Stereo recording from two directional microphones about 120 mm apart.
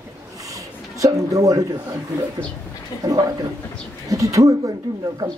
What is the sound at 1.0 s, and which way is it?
Speech, 30° right (ahead or behind).